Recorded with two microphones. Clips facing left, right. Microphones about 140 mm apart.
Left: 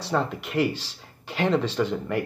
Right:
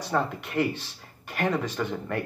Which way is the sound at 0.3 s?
85° left.